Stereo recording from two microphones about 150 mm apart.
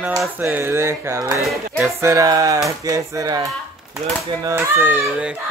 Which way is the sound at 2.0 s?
20° right (ahead or behind).